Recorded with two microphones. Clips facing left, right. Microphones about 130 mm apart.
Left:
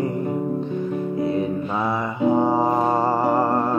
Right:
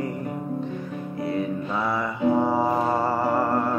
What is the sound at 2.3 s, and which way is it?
Music, 20° left (ahead or behind).